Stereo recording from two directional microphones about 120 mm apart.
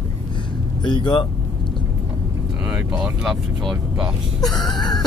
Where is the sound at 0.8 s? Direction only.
40° left (ahead or behind).